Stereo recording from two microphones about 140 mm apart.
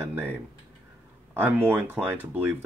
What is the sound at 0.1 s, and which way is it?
Speech, 15° right (ahead or behind).